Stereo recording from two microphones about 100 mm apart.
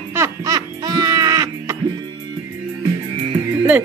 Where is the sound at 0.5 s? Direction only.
40° right (ahead or behind).